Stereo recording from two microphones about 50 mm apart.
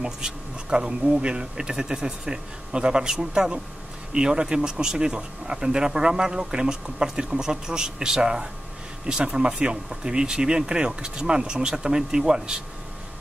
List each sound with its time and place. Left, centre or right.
0.0 s speech: centre